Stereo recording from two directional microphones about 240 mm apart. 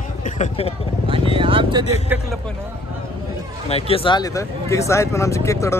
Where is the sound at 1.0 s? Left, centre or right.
Right.